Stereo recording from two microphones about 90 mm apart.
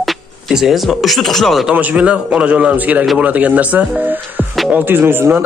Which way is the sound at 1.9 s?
10° right (ahead or behind).